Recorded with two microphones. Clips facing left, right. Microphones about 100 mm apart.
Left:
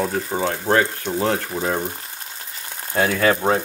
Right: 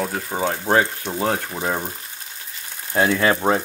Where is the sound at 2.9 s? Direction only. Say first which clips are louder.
Even; 20° right (ahead or behind).